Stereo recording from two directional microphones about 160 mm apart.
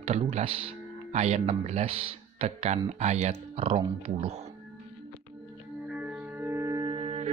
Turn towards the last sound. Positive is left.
turn(degrees=-40)  # may be behind; listen again after turning